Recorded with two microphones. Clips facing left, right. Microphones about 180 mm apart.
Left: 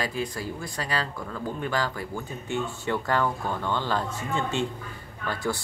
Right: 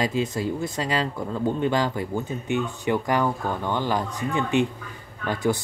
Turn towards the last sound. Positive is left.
turn(degrees=-20)  # may be behind; listen again after turning